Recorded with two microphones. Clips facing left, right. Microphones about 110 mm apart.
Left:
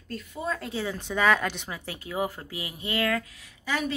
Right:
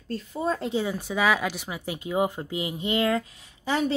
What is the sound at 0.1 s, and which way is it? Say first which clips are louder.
A woman's voice: right 4 dB; 30° right (ahead or behind).